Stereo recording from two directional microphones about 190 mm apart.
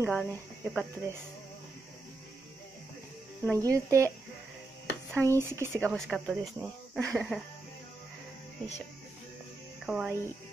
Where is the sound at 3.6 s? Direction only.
15° right (ahead or behind).